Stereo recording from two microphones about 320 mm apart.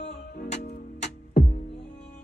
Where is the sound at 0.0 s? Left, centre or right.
Left.